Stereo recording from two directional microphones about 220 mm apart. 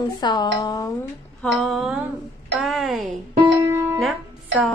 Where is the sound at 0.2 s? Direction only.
20° left (ahead or behind).